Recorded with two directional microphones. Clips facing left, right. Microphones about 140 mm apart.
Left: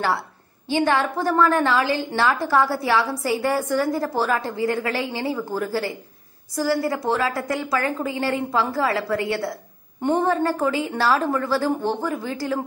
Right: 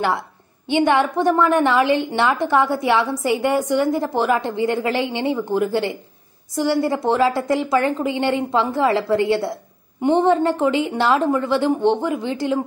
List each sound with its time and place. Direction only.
0.7 s a woman's voice: 20° right (ahead or behind)